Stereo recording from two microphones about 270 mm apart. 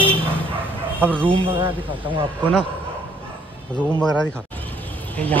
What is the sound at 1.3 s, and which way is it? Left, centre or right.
Speech, centre.